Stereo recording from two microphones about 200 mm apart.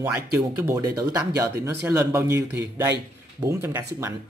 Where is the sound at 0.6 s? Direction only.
15° right (ahead or behind).